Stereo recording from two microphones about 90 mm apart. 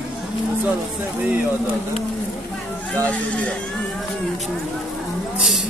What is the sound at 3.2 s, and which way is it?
Speech, 15° left (ahead or behind).